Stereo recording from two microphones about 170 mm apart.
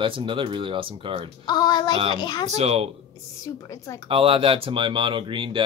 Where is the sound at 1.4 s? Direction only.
25° left (ahead or behind).